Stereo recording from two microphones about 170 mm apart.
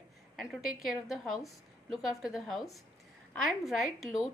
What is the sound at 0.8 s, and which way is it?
A woman's voice, centre (ahead or behind).